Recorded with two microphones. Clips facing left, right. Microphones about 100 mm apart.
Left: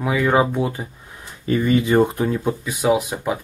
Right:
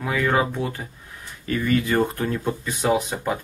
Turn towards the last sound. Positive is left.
turn(degrees=5)  # may be behind; listen again after turning